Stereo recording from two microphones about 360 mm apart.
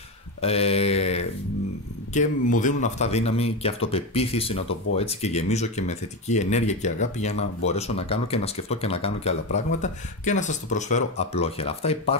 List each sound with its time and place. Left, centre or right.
0.4 s speech: centre